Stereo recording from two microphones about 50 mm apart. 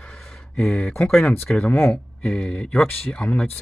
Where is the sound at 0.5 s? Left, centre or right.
Left.